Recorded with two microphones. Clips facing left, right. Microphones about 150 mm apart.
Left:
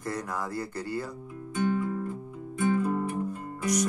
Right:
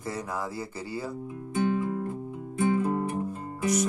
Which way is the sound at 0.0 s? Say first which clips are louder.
Even; 5° right (ahead or behind).